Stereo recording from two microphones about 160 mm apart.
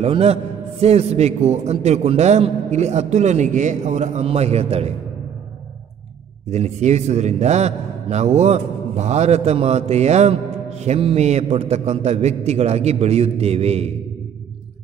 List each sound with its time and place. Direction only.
0.0 s a man's voice: 40° right (ahead or behind)
6.5 s a man's voice: 45° right (ahead or behind)